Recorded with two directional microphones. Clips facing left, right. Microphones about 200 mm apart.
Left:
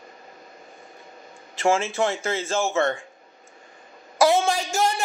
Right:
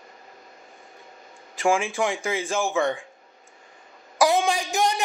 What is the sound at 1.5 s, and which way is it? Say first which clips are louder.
Speech: left 1 dB; 15° right (ahead or behind).